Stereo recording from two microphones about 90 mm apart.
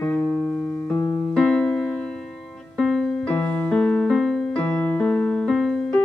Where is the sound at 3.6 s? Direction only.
10° left (ahead or behind).